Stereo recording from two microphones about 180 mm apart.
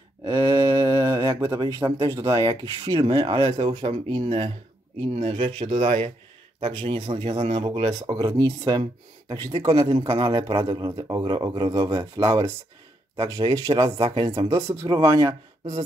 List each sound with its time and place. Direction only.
0.2 s a sound: 20° right (ahead or behind)
2.8 s speech: 25° right (ahead or behind)
14.5 s speech: 20° right (ahead or behind)